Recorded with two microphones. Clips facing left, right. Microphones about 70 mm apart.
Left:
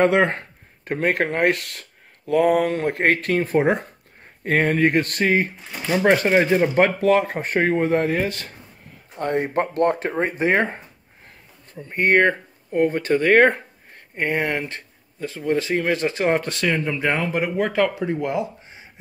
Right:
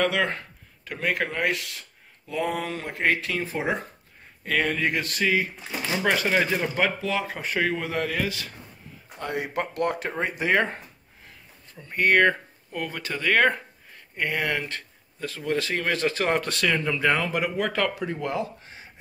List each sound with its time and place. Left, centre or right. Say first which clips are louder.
0.0 s speech: left 7 dB; left
7.0 s speech: left 10 dB; left
8.3 s speech: left 2 dB; left